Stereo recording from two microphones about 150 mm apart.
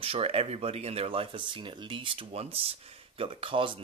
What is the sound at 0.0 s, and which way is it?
Speech, 40° right (ahead or behind).